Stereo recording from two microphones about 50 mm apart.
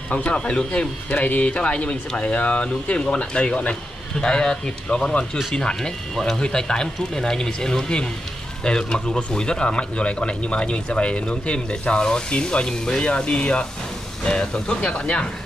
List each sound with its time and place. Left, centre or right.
0.1 s speech: left